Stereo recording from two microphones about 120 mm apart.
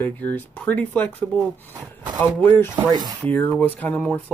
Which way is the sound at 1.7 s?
35° right (ahead or behind).